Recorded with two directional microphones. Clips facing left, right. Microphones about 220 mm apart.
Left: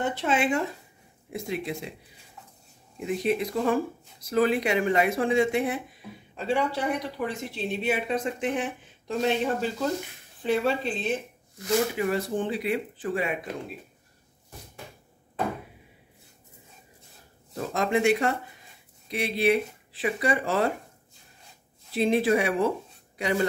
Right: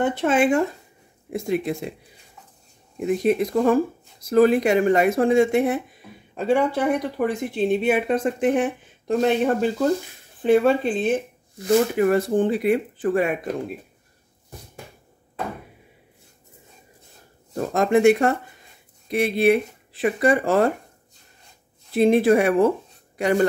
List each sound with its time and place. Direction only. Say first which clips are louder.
0.1 s speech: right 6 dB; 50° right (ahead or behind)
3.0 s speech: right 6 dB; 50° right (ahead or behind)
17.6 s speech: right 7 dB; 50° right (ahead or behind)
21.9 s speech: right 6 dB; 50° right (ahead or behind)